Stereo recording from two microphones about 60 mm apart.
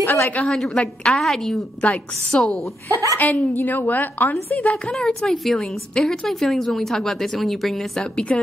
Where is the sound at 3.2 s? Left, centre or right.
Left.